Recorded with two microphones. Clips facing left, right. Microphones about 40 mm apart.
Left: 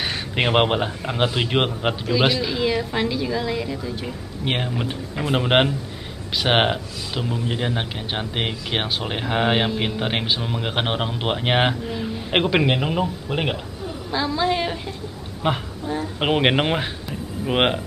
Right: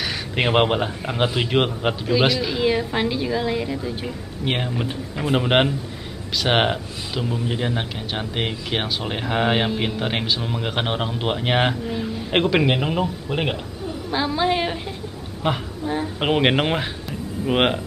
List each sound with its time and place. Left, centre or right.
0.0 s a man's voice: centre
2.4 s a sound: centre
2.9 s a woman's voice: centre
4.5 s a man's voice: centre
14.1 s a woman's voice: centre
15.4 s speech: centre
15.9 s speech: right
16.2 s speech: centre